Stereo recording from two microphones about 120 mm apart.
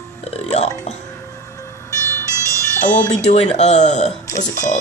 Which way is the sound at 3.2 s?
65° left (ahead or behind).